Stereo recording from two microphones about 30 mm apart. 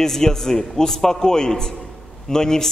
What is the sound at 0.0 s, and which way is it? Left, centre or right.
A man's voice, centre.